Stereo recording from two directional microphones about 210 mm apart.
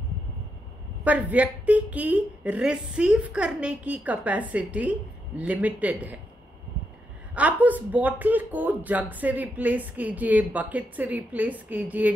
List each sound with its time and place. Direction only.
1.0 s speech: 5° right (ahead or behind)
7.3 s speech: 5° right (ahead or behind)